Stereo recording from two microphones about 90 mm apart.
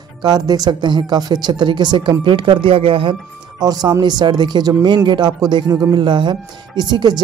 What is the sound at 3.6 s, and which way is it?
Speech, 50° right (ahead or behind).